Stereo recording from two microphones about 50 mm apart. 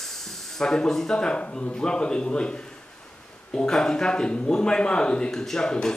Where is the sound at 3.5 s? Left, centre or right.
Centre.